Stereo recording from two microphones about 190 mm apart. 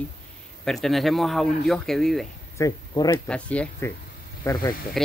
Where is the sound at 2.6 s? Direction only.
15° left (ahead or behind).